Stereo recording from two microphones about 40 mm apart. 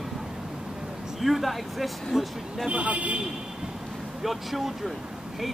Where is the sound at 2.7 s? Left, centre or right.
Right.